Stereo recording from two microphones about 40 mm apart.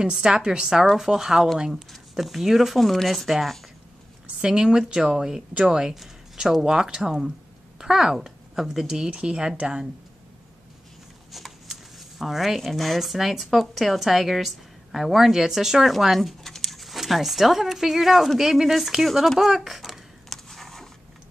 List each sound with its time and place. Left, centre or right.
0.0 s a woman's voice: right; by 3.3 s centre
3.3 s speech: centre
4.4 s speech: centre
11.3 s speech: centre
15.9 s speech: centre
18.9 s speech: centre
20.2 s a sound: centre